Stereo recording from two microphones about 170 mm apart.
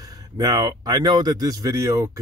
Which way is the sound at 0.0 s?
20° right (ahead or behind).